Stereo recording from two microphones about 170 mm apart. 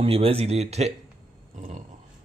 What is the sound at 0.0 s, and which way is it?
Speech, 35° right (ahead or behind).